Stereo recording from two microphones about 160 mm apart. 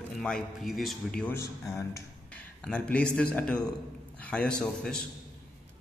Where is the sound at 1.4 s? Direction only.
20° left (ahead or behind).